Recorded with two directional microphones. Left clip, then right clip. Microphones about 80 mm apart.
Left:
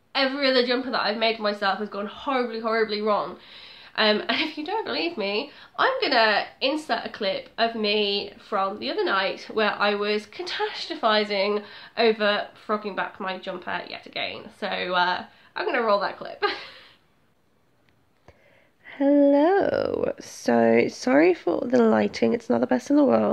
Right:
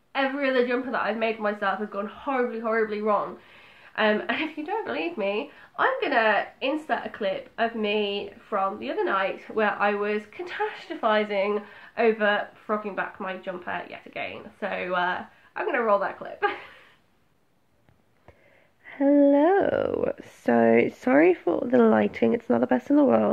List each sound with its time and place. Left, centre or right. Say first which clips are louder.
0.1 s a woman's voice: left 3 dB; left
18.9 s a sound: left 1 dB; centre
19.4 s speech: left 1 dB; centre
20.2 s speech: left 1 dB; centre
20.5 s speech: even; centre